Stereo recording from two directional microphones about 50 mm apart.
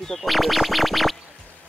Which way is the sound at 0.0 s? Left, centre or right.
Centre.